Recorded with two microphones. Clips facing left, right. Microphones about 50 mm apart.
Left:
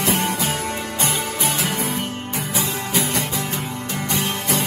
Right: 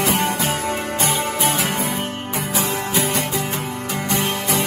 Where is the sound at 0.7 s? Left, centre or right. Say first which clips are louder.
Right 3 dB; right.